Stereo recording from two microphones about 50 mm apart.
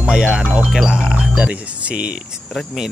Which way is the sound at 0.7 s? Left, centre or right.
Centre.